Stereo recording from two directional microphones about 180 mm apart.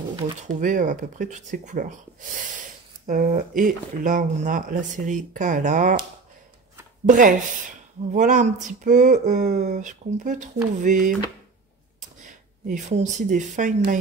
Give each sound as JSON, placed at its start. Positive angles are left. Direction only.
{"t": 0.5, "sound": "speech", "side_deg": -45}
{"t": 3.1, "sound": "speech", "side_deg": -45}
{"t": 7.1, "sound": "speech", "side_deg": -45}
{"t": 12.6, "sound": "speech", "side_deg": -45}